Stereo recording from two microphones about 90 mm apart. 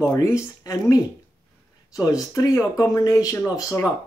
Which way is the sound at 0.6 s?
40° left (ahead or behind).